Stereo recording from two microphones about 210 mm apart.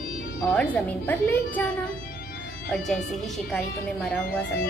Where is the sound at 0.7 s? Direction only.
10° left (ahead or behind).